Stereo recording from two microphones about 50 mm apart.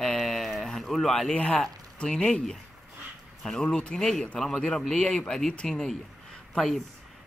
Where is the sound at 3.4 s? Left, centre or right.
Centre.